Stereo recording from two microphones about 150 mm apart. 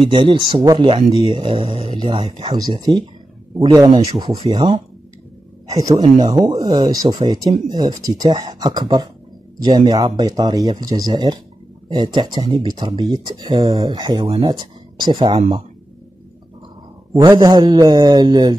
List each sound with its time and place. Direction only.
0.1 s speech: 35° right (ahead or behind)
17.3 s speech: 25° right (ahead or behind)